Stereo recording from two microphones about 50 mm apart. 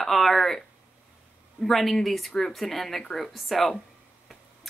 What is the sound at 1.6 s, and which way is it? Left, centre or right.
Speech, centre.